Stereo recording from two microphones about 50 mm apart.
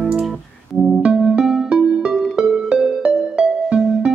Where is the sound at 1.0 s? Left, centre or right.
Centre.